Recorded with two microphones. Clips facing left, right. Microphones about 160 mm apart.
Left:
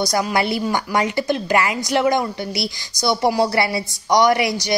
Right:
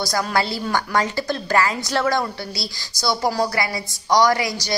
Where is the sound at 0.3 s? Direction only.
20° left (ahead or behind).